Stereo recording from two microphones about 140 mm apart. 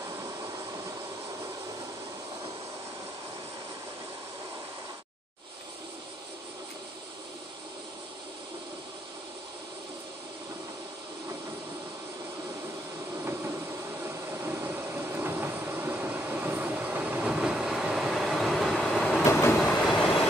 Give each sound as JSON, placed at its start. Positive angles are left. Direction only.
{"t": 13.2, "sound": "train", "side_deg": -15}